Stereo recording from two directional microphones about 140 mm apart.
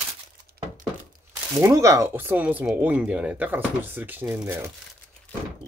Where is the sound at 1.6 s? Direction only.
20° right (ahead or behind).